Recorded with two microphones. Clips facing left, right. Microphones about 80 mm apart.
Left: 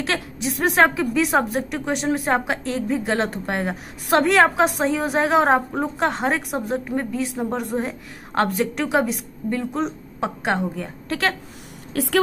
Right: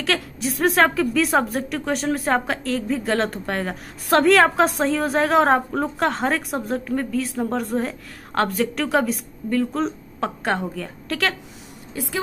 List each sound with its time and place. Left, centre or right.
0.0 s a woman's voice: left
8.4 s a woman's voice: left
11.9 s a woman's voice: left